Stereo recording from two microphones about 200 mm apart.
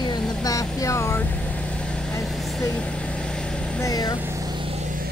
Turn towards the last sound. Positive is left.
turn(degrees=-35)  # may be behind; listen again after turning